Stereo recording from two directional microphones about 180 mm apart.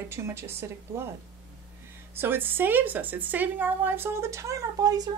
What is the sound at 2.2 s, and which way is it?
A woman's voice, 10° right (ahead or behind).